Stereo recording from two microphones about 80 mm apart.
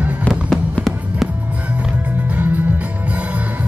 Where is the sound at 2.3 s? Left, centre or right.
Right.